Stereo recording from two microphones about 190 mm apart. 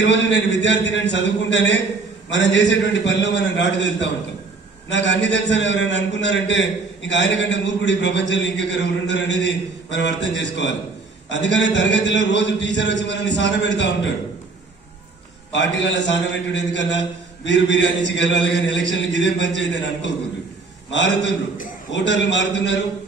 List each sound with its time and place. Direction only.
0.0 s a man's voice: 70° left (ahead or behind)
15.5 s a man's voice: 70° left (ahead or behind)